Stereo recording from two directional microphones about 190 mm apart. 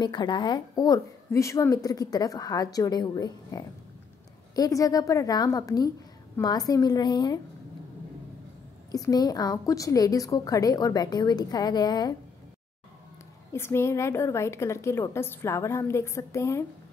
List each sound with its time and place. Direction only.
0.0 s speech: 25° left (ahead or behind)
8.9 s speech: 20° left (ahead or behind)
13.5 s a woman's voice: 15° left (ahead or behind)